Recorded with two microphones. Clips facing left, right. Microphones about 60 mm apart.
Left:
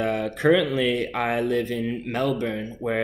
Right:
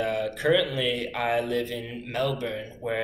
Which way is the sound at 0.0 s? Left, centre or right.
Left.